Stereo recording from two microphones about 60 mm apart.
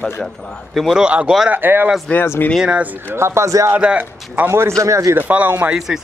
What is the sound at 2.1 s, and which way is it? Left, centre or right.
Speech, left.